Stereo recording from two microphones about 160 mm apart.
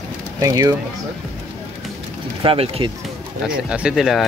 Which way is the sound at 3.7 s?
5° right (ahead or behind).